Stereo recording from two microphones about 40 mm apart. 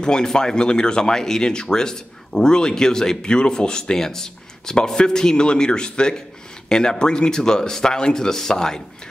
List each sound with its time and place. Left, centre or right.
0.0 s speech: centre